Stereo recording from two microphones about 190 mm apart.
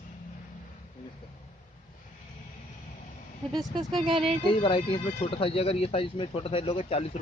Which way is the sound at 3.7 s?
25° right (ahead or behind).